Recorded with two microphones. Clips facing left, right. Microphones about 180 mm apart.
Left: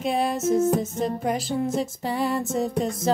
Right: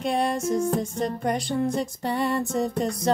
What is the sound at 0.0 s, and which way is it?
Music, centre (ahead or behind).